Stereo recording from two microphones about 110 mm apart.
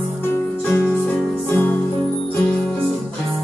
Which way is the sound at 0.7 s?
15° left (ahead or behind).